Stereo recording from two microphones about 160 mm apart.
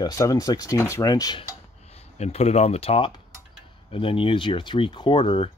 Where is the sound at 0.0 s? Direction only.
20° left (ahead or behind).